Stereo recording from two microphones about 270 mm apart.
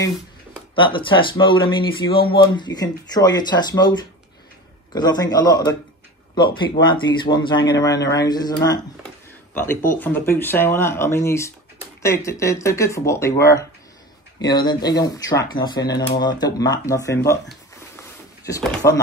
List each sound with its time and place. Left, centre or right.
0.7 s a man's voice: centre
4.9 s a man's voice: centre
18.8 s a man's voice: centre